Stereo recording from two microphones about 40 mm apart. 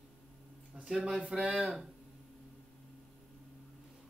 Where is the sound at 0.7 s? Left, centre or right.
Right.